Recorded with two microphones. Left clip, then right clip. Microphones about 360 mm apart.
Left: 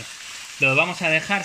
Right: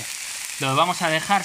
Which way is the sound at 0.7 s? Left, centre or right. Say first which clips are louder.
Even; right.